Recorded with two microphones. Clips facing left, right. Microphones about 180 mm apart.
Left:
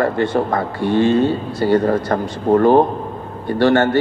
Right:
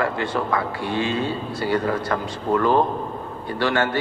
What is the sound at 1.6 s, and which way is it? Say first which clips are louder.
Speech: left 7 dB; 40° left (ahead or behind).